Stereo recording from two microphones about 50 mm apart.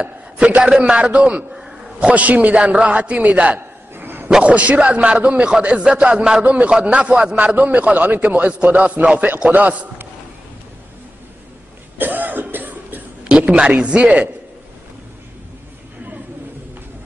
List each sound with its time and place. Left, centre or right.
0.0 s a man's voice: right
1.5 s a sound: centre
2.0 s a man's voice: right
3.9 s dog: right
4.4 s a man's voice: right
12.0 s cough: right
13.2 s a man's voice: right